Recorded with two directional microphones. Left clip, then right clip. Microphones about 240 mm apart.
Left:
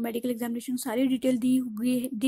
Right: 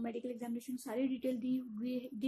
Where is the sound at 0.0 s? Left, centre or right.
Left.